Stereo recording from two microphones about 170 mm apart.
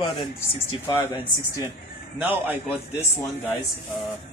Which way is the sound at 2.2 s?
10° right (ahead or behind).